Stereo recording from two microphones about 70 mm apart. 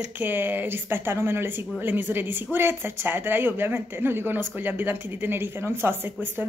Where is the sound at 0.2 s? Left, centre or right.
Right.